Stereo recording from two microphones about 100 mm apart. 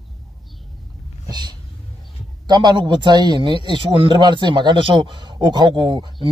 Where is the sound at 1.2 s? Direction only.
45° right (ahead or behind).